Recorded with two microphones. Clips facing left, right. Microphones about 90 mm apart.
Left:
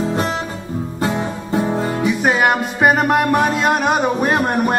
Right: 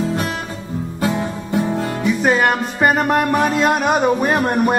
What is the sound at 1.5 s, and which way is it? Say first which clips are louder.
Music: left 1 dB; 35° left (ahead or behind).